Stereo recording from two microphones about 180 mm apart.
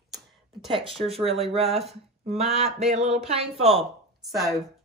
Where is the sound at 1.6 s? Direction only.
Centre (ahead or behind).